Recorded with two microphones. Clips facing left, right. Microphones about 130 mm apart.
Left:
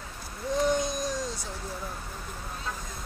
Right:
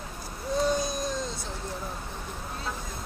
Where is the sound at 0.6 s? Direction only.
20° left (ahead or behind).